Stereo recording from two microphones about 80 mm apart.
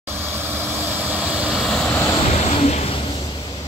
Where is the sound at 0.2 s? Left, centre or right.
Right.